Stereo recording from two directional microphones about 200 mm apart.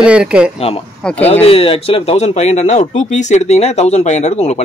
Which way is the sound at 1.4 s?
30° left (ahead or behind).